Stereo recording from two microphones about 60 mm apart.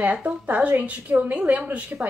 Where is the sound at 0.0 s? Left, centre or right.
Right.